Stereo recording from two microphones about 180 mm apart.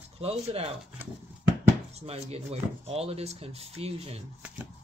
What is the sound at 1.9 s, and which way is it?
Speech, 35° right (ahead or behind).